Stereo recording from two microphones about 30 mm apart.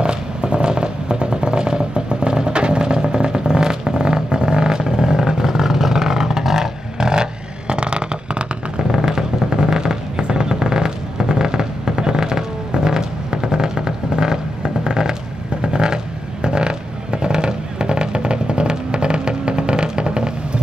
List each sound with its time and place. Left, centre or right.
0.0 s vehicle: right
8.9 s vehicle: right